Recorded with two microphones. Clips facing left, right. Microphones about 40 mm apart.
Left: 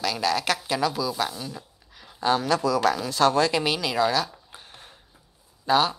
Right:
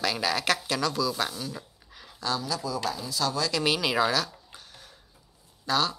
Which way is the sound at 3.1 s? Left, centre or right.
Left.